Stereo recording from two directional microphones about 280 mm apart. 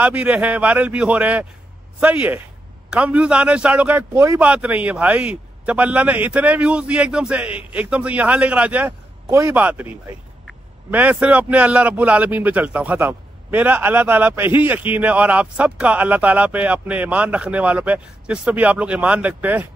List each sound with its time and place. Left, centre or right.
0.0 s a man's voice: centre